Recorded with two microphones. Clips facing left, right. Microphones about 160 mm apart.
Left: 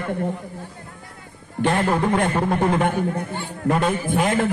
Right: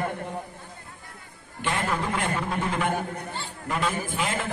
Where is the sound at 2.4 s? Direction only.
55° left (ahead or behind).